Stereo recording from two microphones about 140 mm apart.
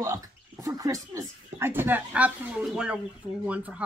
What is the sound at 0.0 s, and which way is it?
Speech, 25° right (ahead or behind).